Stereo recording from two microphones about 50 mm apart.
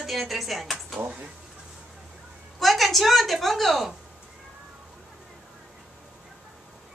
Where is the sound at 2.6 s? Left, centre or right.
Centre.